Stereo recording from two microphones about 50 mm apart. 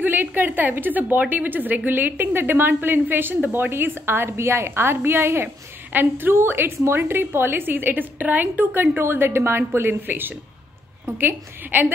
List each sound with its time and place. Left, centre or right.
0.0 s a woman's voice: right